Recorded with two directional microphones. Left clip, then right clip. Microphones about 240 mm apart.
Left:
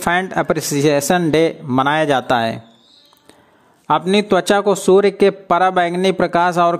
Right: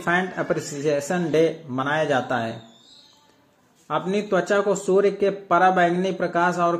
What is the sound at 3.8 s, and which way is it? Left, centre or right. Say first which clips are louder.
A man's voice: left 9 dB; left.